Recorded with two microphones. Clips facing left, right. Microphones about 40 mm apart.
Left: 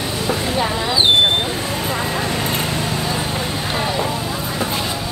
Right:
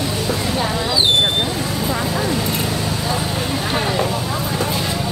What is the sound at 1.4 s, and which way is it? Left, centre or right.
Speech, left.